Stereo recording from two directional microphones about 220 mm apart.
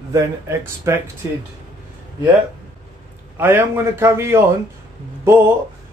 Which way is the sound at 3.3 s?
10° right (ahead or behind).